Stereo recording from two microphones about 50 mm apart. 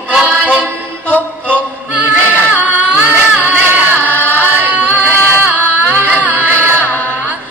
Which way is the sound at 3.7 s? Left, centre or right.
Right.